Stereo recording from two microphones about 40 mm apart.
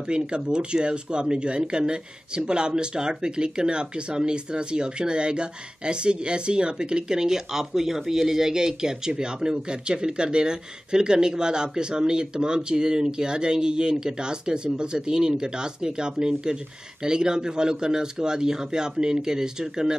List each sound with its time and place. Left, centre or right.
0.1 s speech: right